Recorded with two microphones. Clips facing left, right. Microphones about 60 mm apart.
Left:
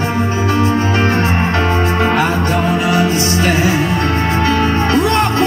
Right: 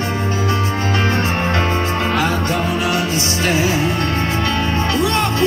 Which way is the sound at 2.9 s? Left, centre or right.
Left.